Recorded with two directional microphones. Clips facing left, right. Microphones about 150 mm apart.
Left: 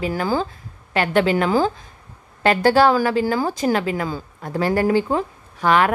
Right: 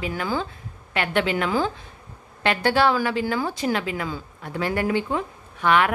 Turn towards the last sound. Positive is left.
turn(degrees=35)  # may be behind; listen again after turning